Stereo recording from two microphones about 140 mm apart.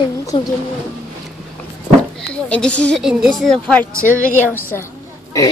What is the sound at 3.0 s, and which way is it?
Speech, 5° right (ahead or behind).